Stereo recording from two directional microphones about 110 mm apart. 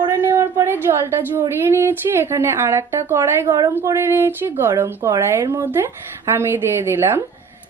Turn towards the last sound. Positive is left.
turn(degrees=-20)  # may be behind; listen again after turning